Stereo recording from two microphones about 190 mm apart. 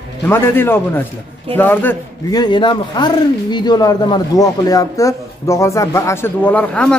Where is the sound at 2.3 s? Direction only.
20° left (ahead or behind).